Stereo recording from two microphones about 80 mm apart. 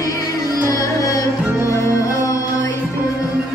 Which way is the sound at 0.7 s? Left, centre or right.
Left.